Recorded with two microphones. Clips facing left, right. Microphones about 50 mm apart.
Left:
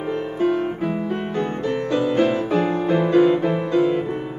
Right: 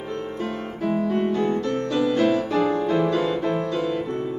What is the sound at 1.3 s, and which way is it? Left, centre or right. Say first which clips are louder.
Music: right 1 dB; left.